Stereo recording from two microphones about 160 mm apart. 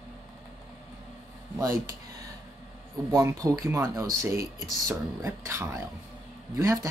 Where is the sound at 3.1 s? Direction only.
20° right (ahead or behind).